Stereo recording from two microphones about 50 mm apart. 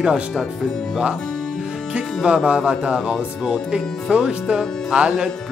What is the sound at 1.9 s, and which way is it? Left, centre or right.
Speech, centre.